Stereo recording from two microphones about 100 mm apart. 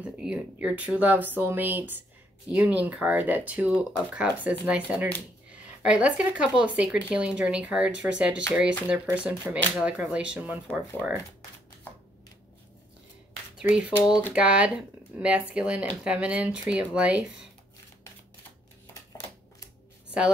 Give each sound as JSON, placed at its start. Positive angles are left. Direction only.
{"t": 0.0, "sound": "speech", "side_deg": -10}
{"t": 13.6, "sound": "speech", "side_deg": -10}